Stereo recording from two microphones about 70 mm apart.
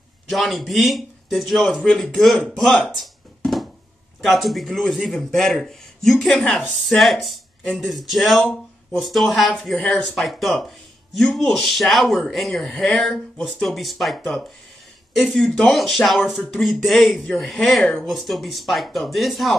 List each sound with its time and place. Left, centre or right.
0.3 s speech: centre
3.0 s a sound: centre
4.2 s speech: centre
9.8 s speech: centre
10.1 s speech: centre
12.6 s speech: centre
13.1 s speech: centre